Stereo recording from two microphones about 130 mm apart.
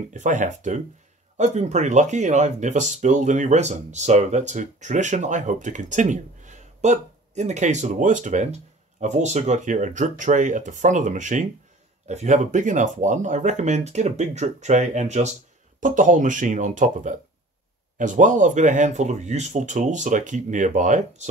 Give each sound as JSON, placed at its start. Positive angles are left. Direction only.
{"t": 0.1, "sound": "speech", "side_deg": -80}
{"t": 1.3, "sound": "speech", "side_deg": -60}
{"t": 12.1, "sound": "speech", "side_deg": -65}
{"t": 15.8, "sound": "speech", "side_deg": -85}